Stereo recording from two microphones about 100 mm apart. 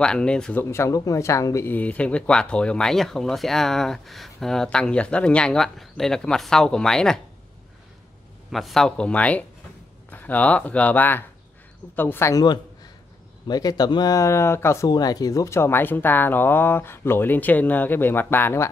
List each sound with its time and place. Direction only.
0.0 s speech: 10° left (ahead or behind)
0.6 s speech: 25° left (ahead or behind)
1.7 s speech: 15° left (ahead or behind)
8.5 s speech: centre (ahead or behind); by 12.4 s 25° left (ahead or behind)
12.4 s a sound: 40° left (ahead or behind)
13.5 s speech: 40° left (ahead or behind)
14.1 s speech: 30° left (ahead or behind)
14.9 s speech: 40° left (ahead or behind); by 18.7 s 25° left (ahead or behind)